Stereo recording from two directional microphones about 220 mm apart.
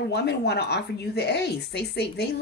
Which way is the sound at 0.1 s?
50° left (ahead or behind).